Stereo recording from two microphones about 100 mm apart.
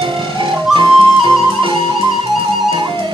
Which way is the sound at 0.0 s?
55° right (ahead or behind).